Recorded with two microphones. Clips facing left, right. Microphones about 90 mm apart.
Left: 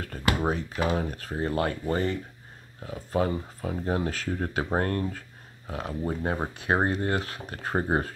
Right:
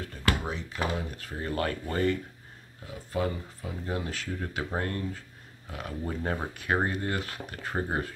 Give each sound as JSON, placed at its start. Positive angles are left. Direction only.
{"t": 0.4, "sound": "speech", "side_deg": 45}
{"t": 2.9, "sound": "speech", "side_deg": 40}
{"t": 5.7, "sound": "speech", "side_deg": 30}